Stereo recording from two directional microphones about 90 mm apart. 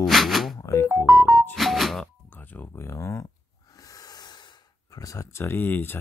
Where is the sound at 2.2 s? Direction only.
20° left (ahead or behind).